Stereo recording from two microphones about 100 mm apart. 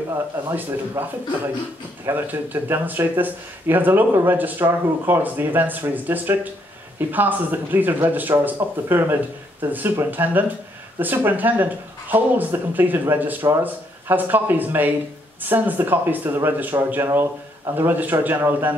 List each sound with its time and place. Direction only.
0.5 s speech: 20° right (ahead or behind)
2.0 s speech: 20° right (ahead or behind)